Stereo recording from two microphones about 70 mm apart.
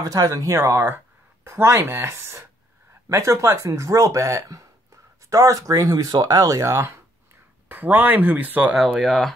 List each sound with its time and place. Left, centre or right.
0.0 s speech: right
6.6 s speech: right
7.6 s speech: right
9.0 s speech: centre